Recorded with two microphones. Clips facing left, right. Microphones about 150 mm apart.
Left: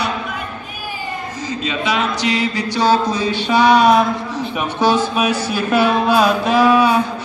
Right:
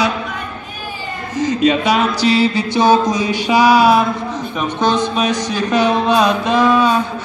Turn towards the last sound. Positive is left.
turn(degrees=10)  # may be behind; listen again after turning